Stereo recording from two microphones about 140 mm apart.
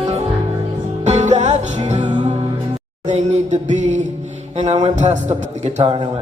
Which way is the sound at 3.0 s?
60° right (ahead or behind).